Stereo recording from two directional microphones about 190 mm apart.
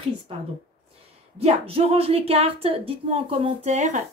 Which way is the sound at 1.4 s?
30° right (ahead or behind).